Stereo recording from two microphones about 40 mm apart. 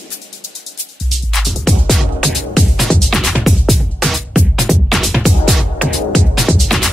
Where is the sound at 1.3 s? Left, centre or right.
Centre.